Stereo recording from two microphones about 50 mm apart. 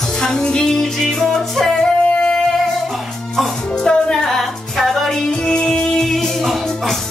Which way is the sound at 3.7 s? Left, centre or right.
Centre.